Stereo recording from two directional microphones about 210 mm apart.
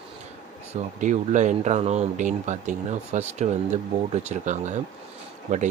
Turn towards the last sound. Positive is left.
turn(degrees=-35)  # may be behind; listen again after turning